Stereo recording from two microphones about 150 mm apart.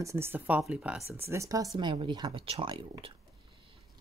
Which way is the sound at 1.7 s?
35° right (ahead or behind).